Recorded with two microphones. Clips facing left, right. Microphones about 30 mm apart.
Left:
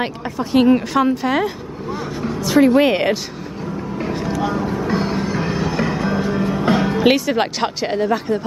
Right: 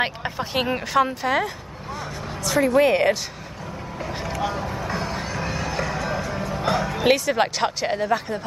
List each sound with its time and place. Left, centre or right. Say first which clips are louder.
0.0 s a woman's voice: left 2 dB; centre
1.9 s speech: left 7 dB; centre
4.4 s speech: left 4 dB; centre
4.6 s vehicle: left 7 dB; left
5.4 s music: left 6 dB; left
7.0 s speech: left 4 dB; centre